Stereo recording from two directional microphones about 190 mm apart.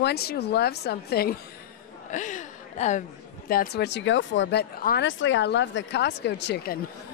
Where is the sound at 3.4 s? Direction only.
55° left (ahead or behind).